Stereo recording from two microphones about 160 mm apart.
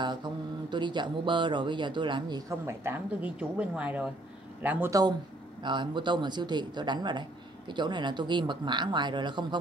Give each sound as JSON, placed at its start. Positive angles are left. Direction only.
{"t": 0.0, "sound": "speech", "side_deg": -30}
{"t": 5.6, "sound": "speech", "side_deg": -30}